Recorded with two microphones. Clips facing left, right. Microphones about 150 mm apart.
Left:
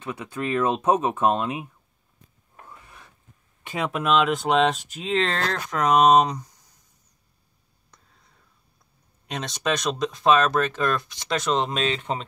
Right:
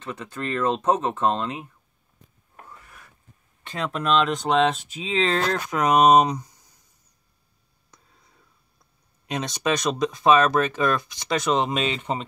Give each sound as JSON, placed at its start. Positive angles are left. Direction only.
{"t": 0.0, "sound": "speech", "side_deg": 10}
{"t": 2.7, "sound": "a sound", "side_deg": 20}
{"t": 3.6, "sound": "speech", "side_deg": 10}
{"t": 9.3, "sound": "speech", "side_deg": 0}